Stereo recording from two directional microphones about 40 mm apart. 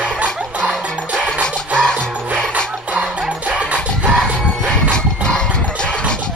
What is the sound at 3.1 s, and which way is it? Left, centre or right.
Music, right.